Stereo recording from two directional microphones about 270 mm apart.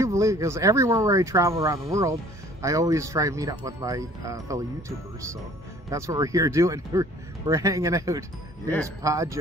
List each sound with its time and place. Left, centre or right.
0.0 s speech: centre